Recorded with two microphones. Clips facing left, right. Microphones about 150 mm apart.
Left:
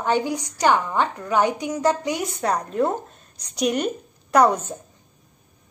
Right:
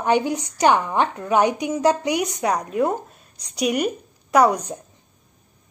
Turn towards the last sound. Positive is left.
turn(degrees=-15)  # may be behind; listen again after turning